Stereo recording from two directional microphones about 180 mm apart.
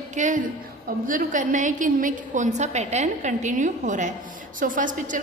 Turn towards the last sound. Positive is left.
turn(degrees=-45)  # may be behind; listen again after turning